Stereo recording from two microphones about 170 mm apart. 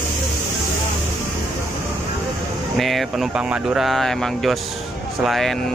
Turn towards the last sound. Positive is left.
turn(degrees=0)  # may be behind; listen again after turning